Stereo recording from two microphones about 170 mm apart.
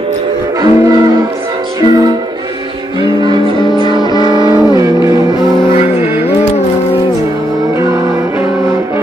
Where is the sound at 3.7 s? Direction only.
25° left (ahead or behind).